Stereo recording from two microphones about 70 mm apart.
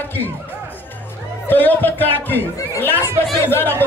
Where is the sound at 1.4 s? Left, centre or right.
Left.